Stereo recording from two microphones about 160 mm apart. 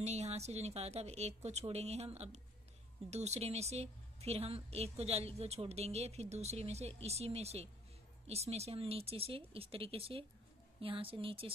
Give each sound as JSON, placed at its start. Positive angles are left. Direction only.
{"t": 0.0, "sound": "a woman's voice", "side_deg": -40}